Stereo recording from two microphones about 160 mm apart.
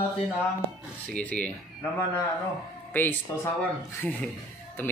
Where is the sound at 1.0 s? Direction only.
10° left (ahead or behind).